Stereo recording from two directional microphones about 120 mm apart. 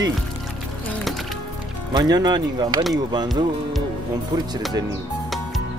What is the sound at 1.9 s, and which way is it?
Speech, 35° right (ahead or behind).